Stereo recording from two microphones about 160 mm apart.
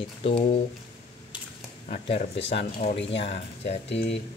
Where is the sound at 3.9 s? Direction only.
90° left.